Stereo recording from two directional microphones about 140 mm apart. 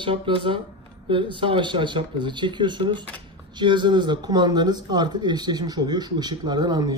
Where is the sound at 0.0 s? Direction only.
40° right (ahead or behind).